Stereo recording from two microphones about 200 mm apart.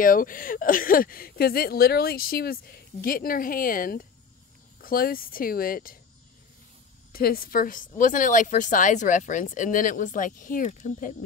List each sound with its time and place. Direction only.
0.0 s speech: 45° left (ahead or behind)
7.1 s speech: 50° left (ahead or behind)